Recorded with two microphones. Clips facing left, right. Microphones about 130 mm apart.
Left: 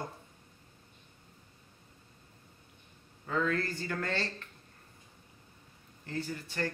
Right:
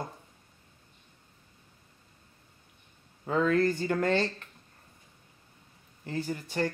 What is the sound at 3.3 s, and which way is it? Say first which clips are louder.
Speech: right 7 dB; 20° right (ahead or behind).